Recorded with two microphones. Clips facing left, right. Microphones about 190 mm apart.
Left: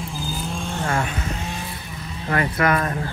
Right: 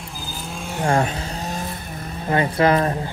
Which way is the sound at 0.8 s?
35° right (ahead or behind).